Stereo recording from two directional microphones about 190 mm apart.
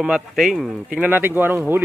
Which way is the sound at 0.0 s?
Centre (ahead or behind).